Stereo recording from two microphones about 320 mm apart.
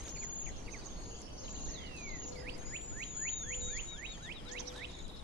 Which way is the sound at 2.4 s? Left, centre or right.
Right.